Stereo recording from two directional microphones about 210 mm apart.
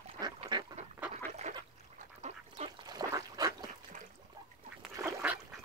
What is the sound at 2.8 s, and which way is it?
Duck, 20° right (ahead or behind).